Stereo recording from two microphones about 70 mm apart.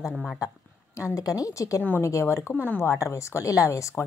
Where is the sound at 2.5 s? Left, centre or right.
Left.